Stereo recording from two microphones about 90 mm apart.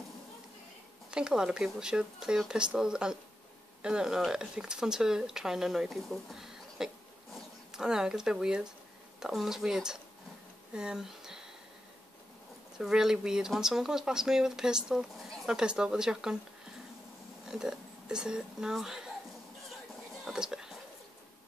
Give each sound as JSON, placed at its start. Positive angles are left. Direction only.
{"t": 1.1, "sound": "speech", "side_deg": -10}
{"t": 12.7, "sound": "speech", "side_deg": -5}
{"t": 17.5, "sound": "speech", "side_deg": -5}
{"t": 20.2, "sound": "a sound", "side_deg": -5}